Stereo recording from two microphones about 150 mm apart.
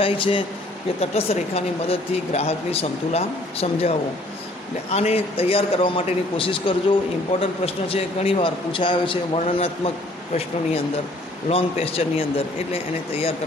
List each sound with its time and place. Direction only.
0.0 s a man's voice: 35° left (ahead or behind)
4.9 s a man's voice: 45° left (ahead or behind)
11.4 s a man's voice: 40° left (ahead or behind)